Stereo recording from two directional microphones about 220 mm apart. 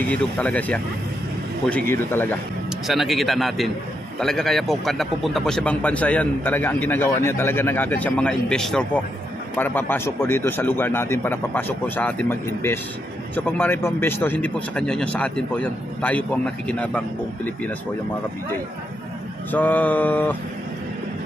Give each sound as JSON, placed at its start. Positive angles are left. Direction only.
{"t": 0.1, "sound": "a man's voice", "side_deg": 5}
{"t": 19.5, "sound": "a man's voice", "side_deg": 5}